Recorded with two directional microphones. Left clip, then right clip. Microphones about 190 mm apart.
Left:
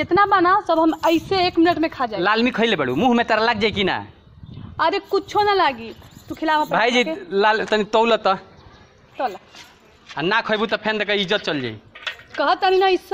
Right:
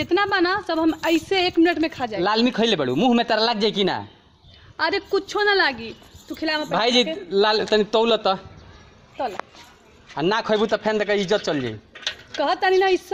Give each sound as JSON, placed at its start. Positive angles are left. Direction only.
{"t": 0.0, "sound": "a woman's voice", "side_deg": -20}
{"t": 0.7, "sound": "a woman's voice", "side_deg": 0}
{"t": 4.7, "sound": "a woman's voice", "side_deg": 5}
{"t": 10.1, "sound": "a man's voice", "side_deg": -15}
{"t": 12.4, "sound": "speech", "side_deg": 10}